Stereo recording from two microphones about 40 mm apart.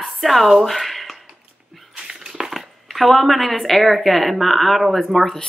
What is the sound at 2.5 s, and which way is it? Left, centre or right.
Speech, centre.